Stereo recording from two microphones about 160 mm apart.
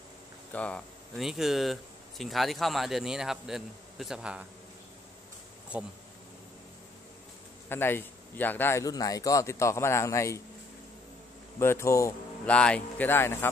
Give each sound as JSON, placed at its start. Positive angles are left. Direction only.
{"t": 0.5, "sound": "speech", "side_deg": 10}
{"t": 5.7, "sound": "speech", "side_deg": -10}
{"t": 7.7, "sound": "a man's voice", "side_deg": 15}
{"t": 11.6, "sound": "a man's voice", "side_deg": 15}
{"t": 12.4, "sound": "a man's voice", "side_deg": 5}